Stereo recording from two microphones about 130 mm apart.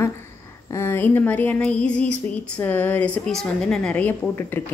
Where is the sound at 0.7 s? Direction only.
20° left (ahead or behind).